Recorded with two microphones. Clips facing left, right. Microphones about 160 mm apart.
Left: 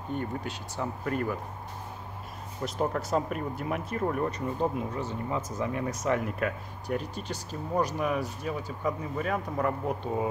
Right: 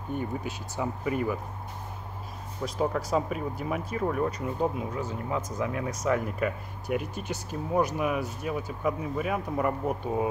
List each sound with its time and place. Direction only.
0.1 s speech: 10° right (ahead or behind)
2.8 s speech: centre (ahead or behind)